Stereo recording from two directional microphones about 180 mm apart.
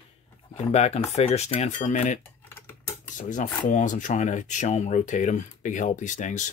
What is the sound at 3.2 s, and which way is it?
Speech, 45° left (ahead or behind).